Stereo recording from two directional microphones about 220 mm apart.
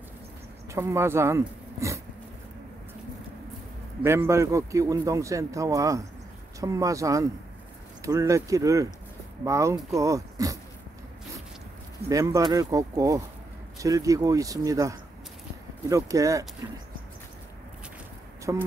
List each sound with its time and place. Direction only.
0.7 s speech: 10° right (ahead or behind)
4.0 s speech: 10° right (ahead or behind)
12.1 s speech: 15° right (ahead or behind)
18.5 s speech: 15° right (ahead or behind)